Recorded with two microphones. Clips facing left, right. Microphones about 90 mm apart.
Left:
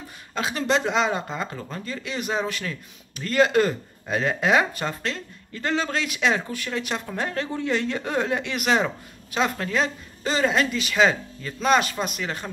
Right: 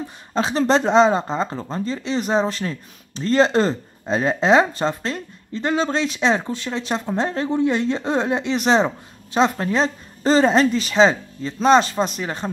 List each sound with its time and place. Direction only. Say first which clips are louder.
0.3 s speech: right 6 dB; 30° right (ahead or behind)